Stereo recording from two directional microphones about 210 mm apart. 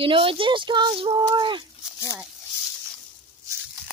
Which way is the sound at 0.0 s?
25° right (ahead or behind).